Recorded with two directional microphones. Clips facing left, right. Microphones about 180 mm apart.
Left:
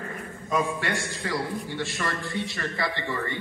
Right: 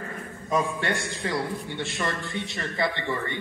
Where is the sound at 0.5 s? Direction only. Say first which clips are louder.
Right 1 dB; 20° right (ahead or behind).